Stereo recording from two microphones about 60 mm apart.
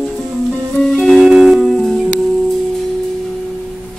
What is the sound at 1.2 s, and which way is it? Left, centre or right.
Music, centre.